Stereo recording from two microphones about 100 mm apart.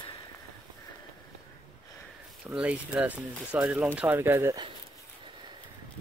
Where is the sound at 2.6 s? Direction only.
10° right (ahead or behind).